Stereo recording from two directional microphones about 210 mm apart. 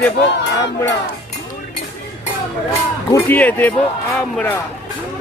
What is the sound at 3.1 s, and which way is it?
Speech, 10° left (ahead or behind).